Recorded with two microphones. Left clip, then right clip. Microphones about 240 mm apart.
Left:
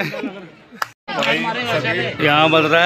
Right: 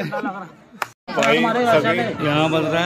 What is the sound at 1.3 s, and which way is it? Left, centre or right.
Speech, right.